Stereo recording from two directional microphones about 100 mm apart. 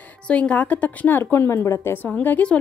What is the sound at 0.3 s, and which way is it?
A woman's voice, 10° left (ahead or behind).